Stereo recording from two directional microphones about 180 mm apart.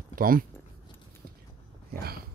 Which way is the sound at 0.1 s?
50° right (ahead or behind).